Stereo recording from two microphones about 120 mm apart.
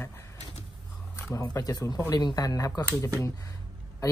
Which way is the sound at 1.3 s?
30° left (ahead or behind).